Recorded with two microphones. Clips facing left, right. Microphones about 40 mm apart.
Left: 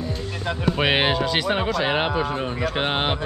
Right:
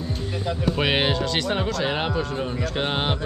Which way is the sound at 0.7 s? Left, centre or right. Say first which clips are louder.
Left 3 dB; centre.